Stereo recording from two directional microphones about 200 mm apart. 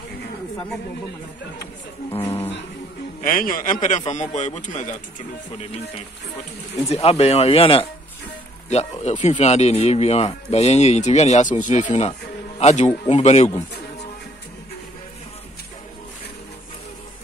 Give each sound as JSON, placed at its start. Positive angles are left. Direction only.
{"t": 3.2, "sound": "speech", "side_deg": 45}
{"t": 6.9, "sound": "speech", "side_deg": 30}
{"t": 9.0, "sound": "speech", "side_deg": 35}